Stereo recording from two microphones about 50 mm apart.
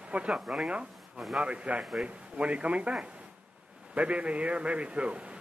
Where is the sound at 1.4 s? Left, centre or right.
Right.